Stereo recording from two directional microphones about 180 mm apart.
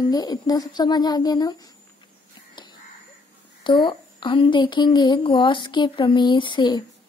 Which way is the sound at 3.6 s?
25° left (ahead or behind).